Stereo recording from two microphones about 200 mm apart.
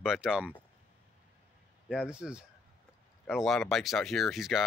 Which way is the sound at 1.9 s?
5° right (ahead or behind).